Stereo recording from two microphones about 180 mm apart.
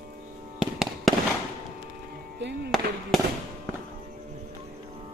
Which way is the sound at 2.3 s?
75° right (ahead or behind).